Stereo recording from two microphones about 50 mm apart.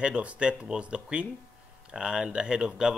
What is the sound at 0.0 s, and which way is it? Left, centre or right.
Speech, right.